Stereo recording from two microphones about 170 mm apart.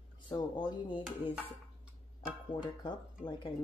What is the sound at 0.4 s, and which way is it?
Speech, 25° left (ahead or behind).